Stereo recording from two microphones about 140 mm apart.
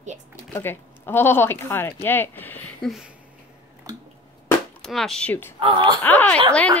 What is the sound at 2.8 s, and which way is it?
Speech, 5° right (ahead or behind).